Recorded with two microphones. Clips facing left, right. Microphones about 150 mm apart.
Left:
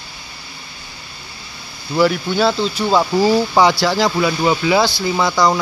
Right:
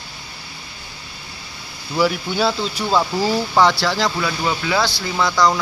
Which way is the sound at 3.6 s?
5° left (ahead or behind).